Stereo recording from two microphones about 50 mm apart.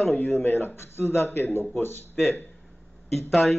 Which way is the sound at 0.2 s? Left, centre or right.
Left.